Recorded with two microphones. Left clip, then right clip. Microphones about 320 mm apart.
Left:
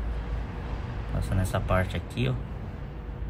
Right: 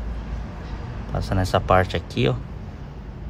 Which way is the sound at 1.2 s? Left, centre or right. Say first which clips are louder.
Right 10 dB; right.